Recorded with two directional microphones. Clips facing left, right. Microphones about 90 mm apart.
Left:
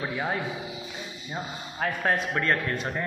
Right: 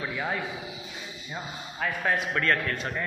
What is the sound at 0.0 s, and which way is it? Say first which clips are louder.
Speech: left 2 dB; 25° left (ahead or behind).